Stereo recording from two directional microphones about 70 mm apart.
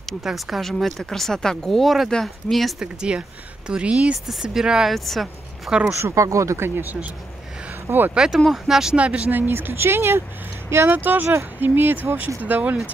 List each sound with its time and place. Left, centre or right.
0.2 s speech: centre
2.8 s speech: centre
5.7 s speech: centre
6.1 s speech: right
8.1 s speech: centre
8.9 s speech: centre